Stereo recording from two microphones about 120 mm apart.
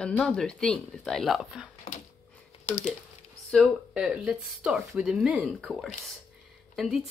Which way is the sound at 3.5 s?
Centre (ahead or behind).